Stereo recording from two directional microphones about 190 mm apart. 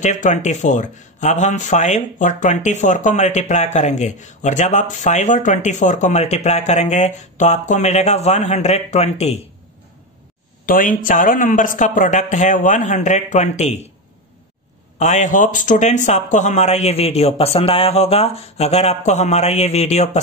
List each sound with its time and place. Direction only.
0.0 s speech: 40° left (ahead or behind)
10.6 s speech: 45° left (ahead or behind)
15.0 s speech: 40° left (ahead or behind)